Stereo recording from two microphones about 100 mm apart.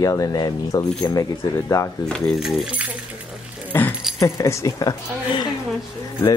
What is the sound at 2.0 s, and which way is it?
Speech, 5° left (ahead or behind).